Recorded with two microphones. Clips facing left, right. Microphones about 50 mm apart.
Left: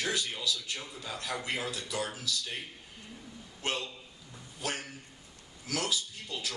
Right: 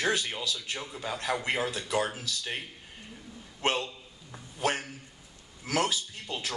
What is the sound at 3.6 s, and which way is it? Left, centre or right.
A man's voice, right.